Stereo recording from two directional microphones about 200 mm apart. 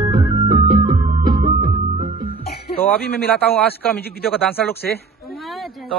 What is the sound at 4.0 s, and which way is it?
Speech, 50° left (ahead or behind).